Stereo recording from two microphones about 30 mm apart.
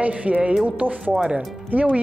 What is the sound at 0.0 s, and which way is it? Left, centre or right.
Speech, right.